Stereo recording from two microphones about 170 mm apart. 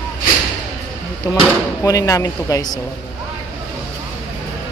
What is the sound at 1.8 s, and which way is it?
Speech, 20° left (ahead or behind).